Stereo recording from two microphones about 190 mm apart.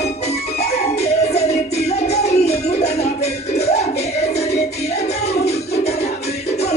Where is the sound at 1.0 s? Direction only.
35° left (ahead or behind).